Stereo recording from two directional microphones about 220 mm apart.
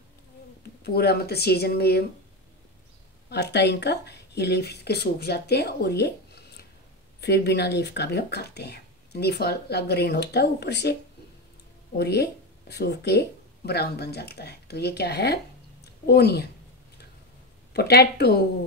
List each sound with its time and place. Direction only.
0.8 s speech: 45° left (ahead or behind)
3.3 s speech: 50° left (ahead or behind)
12.0 s speech: 50° left (ahead or behind)
17.7 s speech: 45° left (ahead or behind)